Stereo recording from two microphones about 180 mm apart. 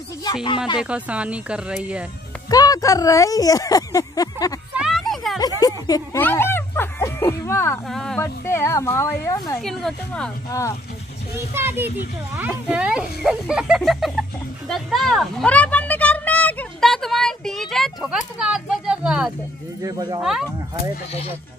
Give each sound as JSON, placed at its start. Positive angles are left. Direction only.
{"t": 0.2, "sound": "speech", "side_deg": 25}
{"t": 0.7, "sound": "speech", "side_deg": -5}
{"t": 2.5, "sound": "speech", "side_deg": 20}
{"t": 4.7, "sound": "a sound", "side_deg": 0}
{"t": 5.6, "sound": "speech", "side_deg": 20}
{"t": 7.9, "sound": "a child's voice", "side_deg": 5}
{"t": 8.2, "sound": "speech", "side_deg": 15}
{"t": 9.6, "sound": "a child's voice", "side_deg": 0}
{"t": 10.5, "sound": "speech", "side_deg": 15}
{"t": 11.3, "sound": "a child's voice", "side_deg": -15}
{"t": 14.7, "sound": "a sound", "side_deg": 0}
{"t": 19.8, "sound": "speech", "side_deg": -20}
{"t": 20.2, "sound": "a child's voice", "side_deg": -5}